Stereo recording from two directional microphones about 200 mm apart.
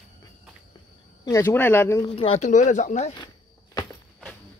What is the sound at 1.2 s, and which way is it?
Speech, 15° left (ahead or behind).